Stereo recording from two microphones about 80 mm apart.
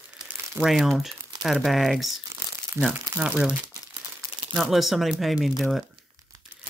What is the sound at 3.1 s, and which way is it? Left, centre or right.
Speech, centre.